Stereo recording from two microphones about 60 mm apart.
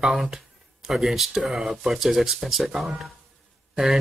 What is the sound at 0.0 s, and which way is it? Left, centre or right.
A man's voice, centre.